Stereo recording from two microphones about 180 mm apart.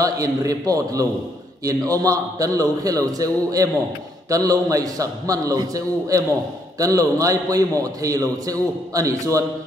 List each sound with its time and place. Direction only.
0.0 s a man's voice: 20° right (ahead or behind)